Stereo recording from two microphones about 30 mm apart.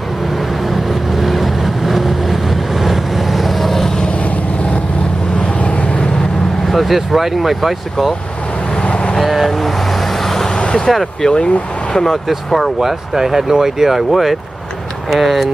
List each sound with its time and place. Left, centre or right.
1.1 s vehicle: centre
6.6 s speech: centre
8.8 s vehicle: left
9.2 s vehicle: centre
10.2 s vehicle: centre
10.9 s speech: centre
11.2 s speech: left
12.4 s speech: centre
12.8 s speech: centre